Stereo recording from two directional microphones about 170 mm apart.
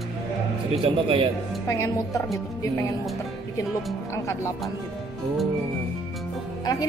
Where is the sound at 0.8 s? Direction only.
30° right (ahead or behind).